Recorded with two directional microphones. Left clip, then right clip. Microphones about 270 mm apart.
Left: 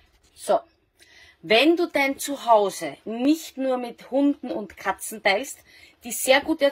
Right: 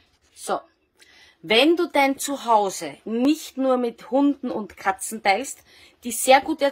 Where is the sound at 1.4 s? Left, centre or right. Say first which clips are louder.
Right 1 dB; centre.